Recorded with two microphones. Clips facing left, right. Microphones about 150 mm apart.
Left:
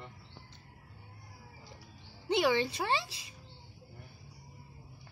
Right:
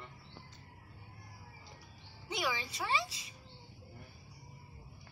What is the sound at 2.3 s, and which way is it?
Speech, 70° left (ahead or behind).